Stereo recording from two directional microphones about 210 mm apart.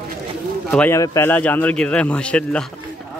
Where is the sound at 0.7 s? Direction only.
10° left (ahead or behind).